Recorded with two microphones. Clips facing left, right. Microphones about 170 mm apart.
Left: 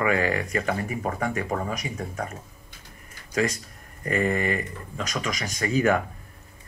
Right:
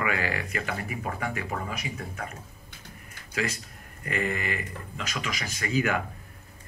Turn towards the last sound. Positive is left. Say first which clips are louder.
# left 5 dB
turn(degrees=35)  # may be behind; listen again after turning